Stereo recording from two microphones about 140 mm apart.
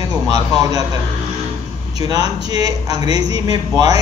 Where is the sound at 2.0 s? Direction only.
25° right (ahead or behind).